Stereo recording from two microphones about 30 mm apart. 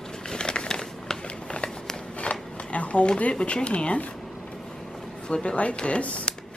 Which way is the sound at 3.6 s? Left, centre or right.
Left.